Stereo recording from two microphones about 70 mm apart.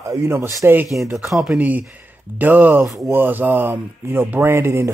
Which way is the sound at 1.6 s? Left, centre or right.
Right.